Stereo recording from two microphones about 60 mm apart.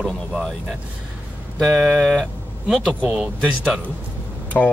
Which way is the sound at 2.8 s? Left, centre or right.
Centre.